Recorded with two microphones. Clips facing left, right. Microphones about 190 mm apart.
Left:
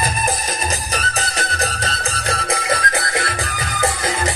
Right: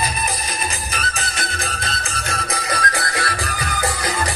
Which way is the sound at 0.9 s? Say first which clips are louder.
Left 4 dB; 40° left (ahead or behind).